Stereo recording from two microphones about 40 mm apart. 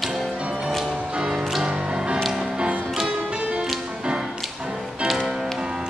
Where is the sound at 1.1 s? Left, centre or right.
Right.